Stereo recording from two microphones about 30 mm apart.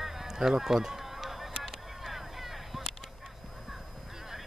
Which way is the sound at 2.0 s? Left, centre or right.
Centre.